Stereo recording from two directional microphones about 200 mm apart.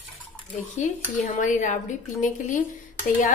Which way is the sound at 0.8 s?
40° left (ahead or behind).